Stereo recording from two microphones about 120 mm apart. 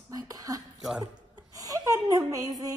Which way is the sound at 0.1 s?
30° right (ahead or behind).